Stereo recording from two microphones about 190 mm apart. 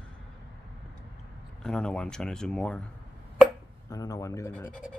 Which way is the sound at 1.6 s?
5° left (ahead or behind).